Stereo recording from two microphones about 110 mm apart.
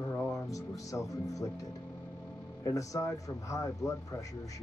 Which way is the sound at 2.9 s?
30° left (ahead or behind).